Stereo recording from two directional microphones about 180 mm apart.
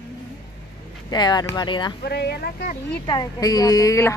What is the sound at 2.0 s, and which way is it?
Speech, 65° left (ahead or behind).